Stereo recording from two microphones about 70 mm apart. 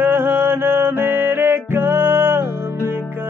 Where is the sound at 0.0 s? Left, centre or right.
Right.